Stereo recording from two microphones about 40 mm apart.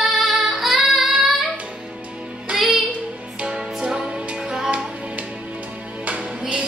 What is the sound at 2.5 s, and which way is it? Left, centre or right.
Music, centre.